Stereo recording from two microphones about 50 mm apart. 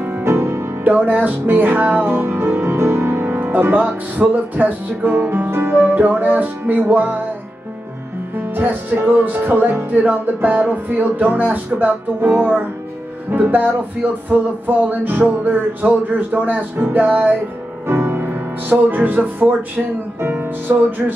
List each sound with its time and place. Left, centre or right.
0.2 s music: right
0.8 s speech: right
2.1 s music: right
3.2 s speech: right
5.3 s music: right
5.9 s speech: right
8.4 s speech: right
17.8 s music: right
20.2 s speech: right